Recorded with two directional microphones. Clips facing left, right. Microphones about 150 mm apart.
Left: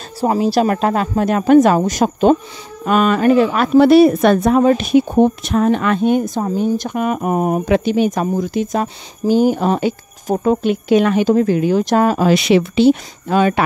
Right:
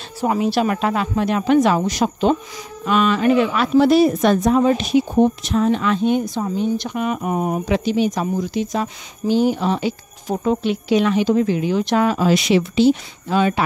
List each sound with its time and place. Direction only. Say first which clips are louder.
0.2 s a woman's voice: left 3 dB; 35° left (ahead or behind); by 8.8 s 50° left (ahead or behind)
8.8 s a woman's voice: left 4 dB; 40° left (ahead or behind)
12.3 s speech: left 3 dB; 65° left (ahead or behind)